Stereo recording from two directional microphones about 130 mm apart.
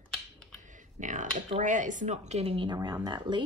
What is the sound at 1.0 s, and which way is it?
Speech, 75° right (ahead or behind).